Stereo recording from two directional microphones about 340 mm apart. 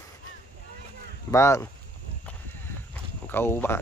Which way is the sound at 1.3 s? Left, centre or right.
Centre.